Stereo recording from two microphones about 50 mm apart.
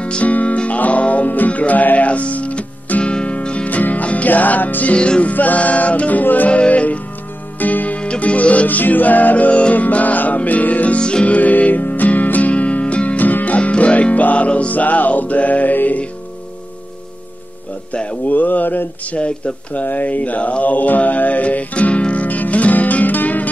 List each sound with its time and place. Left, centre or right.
0.0 s music: left
4.9 s music: centre
5.3 s music: left
8.0 s music: left
11.0 s music: centre; by 13.6 s left
13.6 s music: left
17.9 s speech: left
18.3 s a sound: left
19.1 s speech: left